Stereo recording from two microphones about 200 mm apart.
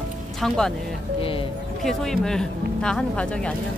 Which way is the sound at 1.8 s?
Centre (ahead or behind).